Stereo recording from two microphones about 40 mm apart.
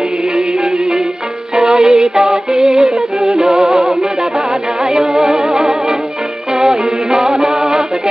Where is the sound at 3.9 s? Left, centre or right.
Centre.